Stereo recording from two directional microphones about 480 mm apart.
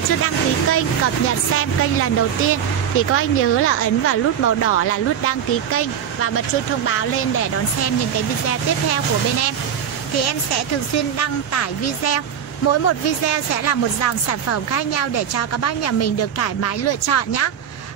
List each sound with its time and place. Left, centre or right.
0.2 s speech: left
11.0 s speech: left